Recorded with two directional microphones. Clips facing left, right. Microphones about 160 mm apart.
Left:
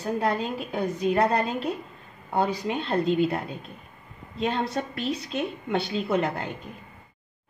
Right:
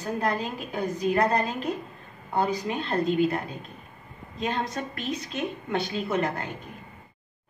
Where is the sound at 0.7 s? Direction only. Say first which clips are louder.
Left 1 dB; 30° left (ahead or behind).